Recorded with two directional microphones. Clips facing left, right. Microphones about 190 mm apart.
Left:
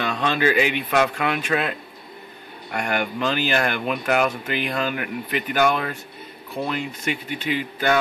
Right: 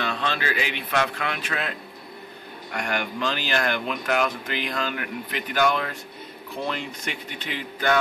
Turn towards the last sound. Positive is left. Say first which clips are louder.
# left 3 dB
turn(degrees=15)  # may be behind; listen again after turning